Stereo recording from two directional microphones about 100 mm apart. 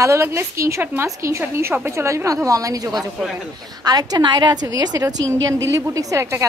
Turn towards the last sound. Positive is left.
turn(degrees=-30)  # may be behind; listen again after turning